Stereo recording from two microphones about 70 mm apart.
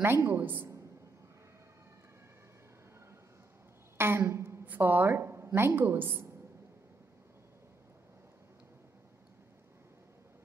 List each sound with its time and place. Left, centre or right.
0.0 s a woman's voice: right
4.0 s a woman's voice: right